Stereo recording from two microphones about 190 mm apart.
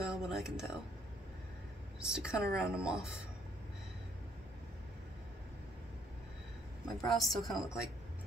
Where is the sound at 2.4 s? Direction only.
55° right (ahead or behind).